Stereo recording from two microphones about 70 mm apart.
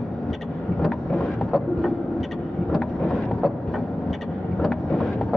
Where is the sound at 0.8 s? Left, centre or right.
Centre.